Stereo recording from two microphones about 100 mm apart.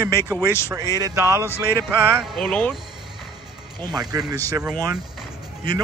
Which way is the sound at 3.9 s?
40° right (ahead or behind).